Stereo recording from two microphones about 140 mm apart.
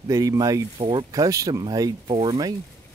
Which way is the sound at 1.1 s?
25° right (ahead or behind).